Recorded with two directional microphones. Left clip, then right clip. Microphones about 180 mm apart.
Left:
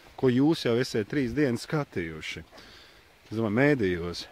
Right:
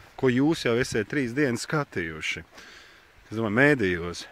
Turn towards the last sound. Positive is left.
turn(degrees=0)  # may be behind; listen again after turning